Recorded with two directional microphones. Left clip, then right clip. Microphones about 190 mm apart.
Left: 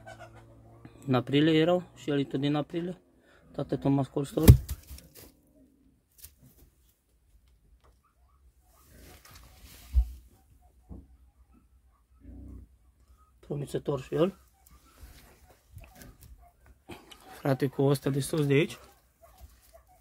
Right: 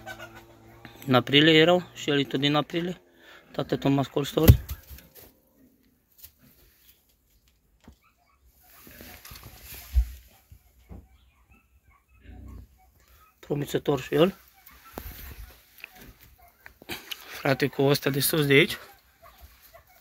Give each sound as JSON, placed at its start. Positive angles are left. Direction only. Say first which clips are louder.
{"t": 0.8, "sound": "speech", "louder": "right 7 dB", "side_deg": -5}
{"t": 13.4, "sound": "speech", "louder": "right 6 dB", "side_deg": -20}
{"t": 16.8, "sound": "speech", "louder": "right 11 dB", "side_deg": 10}
{"t": 19.7, "sound": "a sound", "louder": "right 4 dB", "side_deg": 30}